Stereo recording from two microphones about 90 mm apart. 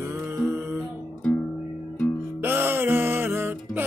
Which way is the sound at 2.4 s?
25° right (ahead or behind).